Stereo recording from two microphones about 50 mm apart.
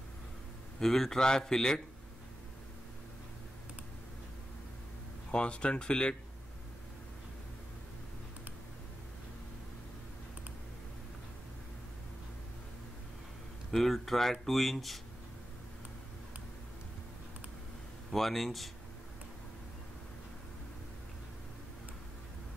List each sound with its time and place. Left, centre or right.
0.7 s a man's voice: centre
5.3 s speech: left
13.7 s speech: centre
18.1 s speech: centre